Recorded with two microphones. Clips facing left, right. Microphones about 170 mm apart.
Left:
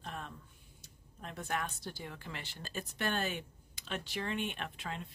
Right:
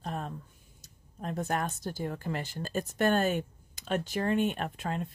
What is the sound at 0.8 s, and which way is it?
Speech, 40° right (ahead or behind).